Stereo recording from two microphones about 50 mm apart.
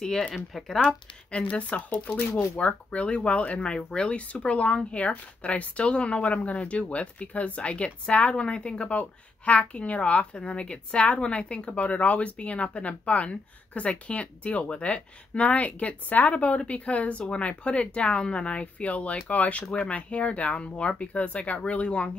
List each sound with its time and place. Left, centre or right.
0.7 s speech: left